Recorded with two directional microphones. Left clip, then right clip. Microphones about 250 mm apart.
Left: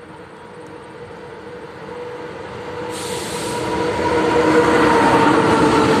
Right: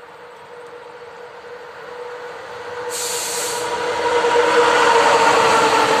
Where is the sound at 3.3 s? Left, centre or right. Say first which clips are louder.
Left 2 dB; right.